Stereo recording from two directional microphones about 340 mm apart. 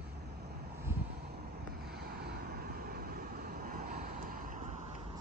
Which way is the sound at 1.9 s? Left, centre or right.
Right.